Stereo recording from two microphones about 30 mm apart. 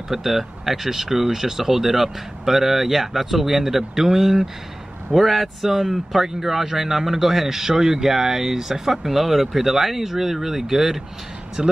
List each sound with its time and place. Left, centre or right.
0.1 s speech: centre
5.2 s speech: centre
5.6 s speech: centre
8.9 s speech: centre
11.6 s speech: right